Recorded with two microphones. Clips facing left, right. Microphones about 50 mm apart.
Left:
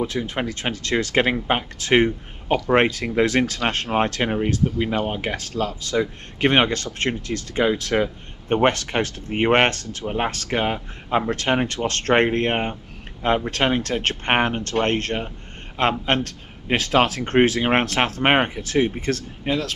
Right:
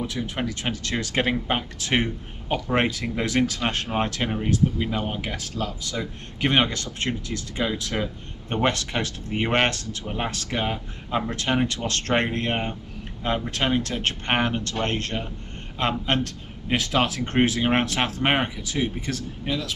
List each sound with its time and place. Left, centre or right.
0.0 s speech: left